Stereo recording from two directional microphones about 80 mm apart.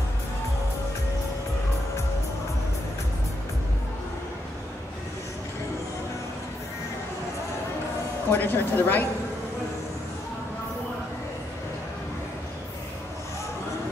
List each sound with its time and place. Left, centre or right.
8.3 s speech: left